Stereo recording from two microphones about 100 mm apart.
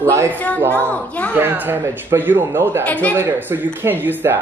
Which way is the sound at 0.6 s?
20° right (ahead or behind).